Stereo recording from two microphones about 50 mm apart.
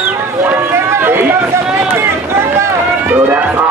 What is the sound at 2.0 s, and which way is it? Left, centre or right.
Speech, right.